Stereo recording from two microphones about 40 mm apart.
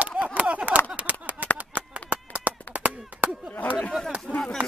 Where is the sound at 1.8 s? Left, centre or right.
Right.